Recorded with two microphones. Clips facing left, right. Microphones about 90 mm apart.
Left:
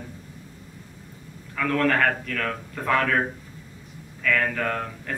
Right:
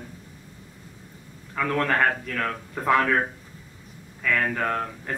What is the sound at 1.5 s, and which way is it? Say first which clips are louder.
Speech: left 1 dB; 15° right (ahead or behind).